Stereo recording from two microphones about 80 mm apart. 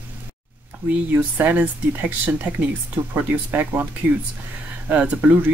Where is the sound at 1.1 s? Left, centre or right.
Right.